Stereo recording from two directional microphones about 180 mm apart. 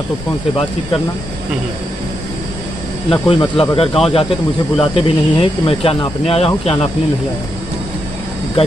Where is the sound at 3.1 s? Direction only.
30° left (ahead or behind).